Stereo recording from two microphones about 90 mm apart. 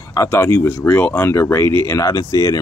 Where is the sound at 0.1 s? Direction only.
30° left (ahead or behind).